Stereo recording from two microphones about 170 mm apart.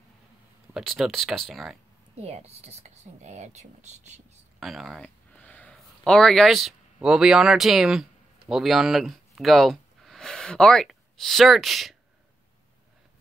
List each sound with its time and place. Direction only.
0.7 s speech: centre (ahead or behind)
2.2 s speech: 40° right (ahead or behind)
4.6 s a man's voice: centre (ahead or behind)